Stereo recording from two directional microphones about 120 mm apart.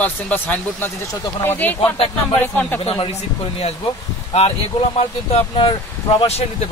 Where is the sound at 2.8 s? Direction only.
55° left (ahead or behind).